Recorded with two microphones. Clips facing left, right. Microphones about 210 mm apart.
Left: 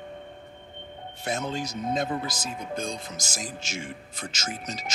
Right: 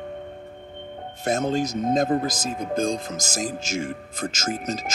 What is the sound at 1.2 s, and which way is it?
Speech, 45° right (ahead or behind).